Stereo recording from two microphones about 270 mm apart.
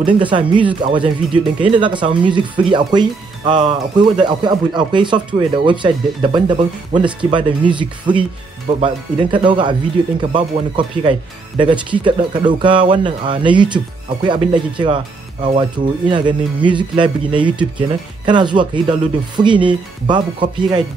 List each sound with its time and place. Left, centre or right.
0.0 s speech: centre
16.1 s speech: centre